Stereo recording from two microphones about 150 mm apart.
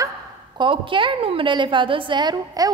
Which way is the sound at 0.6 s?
35° right (ahead or behind).